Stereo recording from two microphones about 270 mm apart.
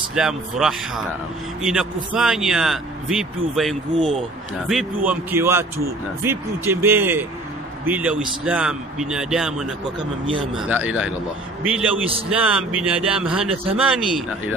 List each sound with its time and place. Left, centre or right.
0.1 s a man's voice: centre